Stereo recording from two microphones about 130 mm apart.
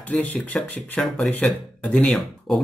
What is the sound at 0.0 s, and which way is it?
Speech, 10° left (ahead or behind).